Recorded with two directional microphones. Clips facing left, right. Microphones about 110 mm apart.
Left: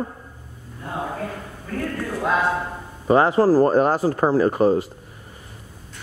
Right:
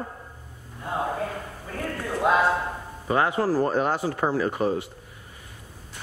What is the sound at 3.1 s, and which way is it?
Speech, 35° left (ahead or behind).